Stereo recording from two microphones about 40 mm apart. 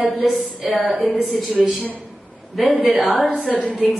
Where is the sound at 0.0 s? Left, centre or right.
Centre.